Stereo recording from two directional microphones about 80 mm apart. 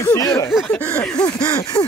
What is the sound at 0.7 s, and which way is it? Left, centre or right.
Speech, centre.